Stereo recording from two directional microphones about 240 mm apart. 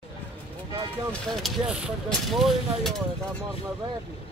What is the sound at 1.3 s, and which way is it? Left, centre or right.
Speech, centre.